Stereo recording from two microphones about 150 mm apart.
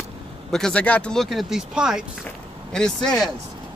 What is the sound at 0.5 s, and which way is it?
Speech, 5° left (ahead or behind).